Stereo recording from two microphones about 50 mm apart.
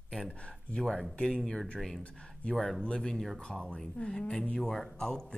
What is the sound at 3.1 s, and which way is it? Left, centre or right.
Speech, centre.